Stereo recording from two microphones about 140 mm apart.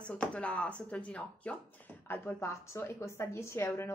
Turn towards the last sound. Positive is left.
turn(degrees=20)  # may be behind; listen again after turning